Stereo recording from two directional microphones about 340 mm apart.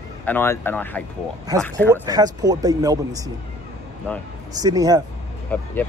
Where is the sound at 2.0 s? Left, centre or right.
Centre.